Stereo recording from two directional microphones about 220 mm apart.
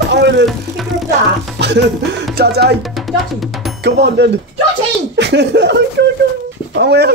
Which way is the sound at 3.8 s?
50° right (ahead or behind).